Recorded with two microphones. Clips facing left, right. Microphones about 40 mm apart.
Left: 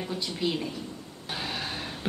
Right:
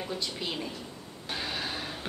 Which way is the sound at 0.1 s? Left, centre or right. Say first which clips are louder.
Left 7 dB; centre.